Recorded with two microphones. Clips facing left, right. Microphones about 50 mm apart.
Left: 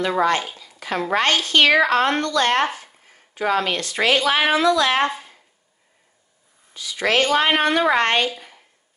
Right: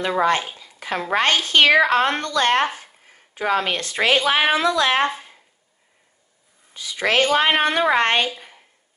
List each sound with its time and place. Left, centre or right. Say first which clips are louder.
0.2 s speech: even; right
6.7 s a woman's voice: even; right